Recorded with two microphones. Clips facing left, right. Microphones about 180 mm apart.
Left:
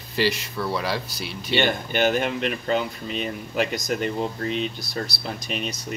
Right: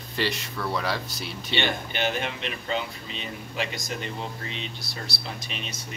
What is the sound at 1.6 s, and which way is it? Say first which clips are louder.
Speech: left 6 dB; 45° left (ahead or behind).